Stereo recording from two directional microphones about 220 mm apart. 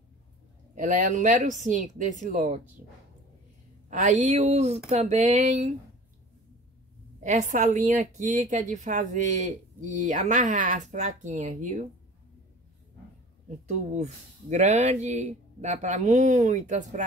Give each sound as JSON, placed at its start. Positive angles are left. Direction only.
{"t": 0.7, "sound": "speech", "side_deg": -35}
{"t": 3.9, "sound": "speech", "side_deg": -35}
{"t": 7.2, "sound": "speech", "side_deg": -35}
{"t": 13.9, "sound": "speech", "side_deg": -30}